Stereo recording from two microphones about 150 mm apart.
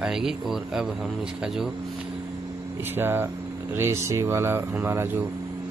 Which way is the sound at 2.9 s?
15° right (ahead or behind).